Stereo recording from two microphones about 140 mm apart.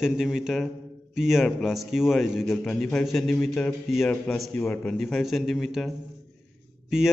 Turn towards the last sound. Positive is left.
turn(degrees=-5)  # may be behind; listen again after turning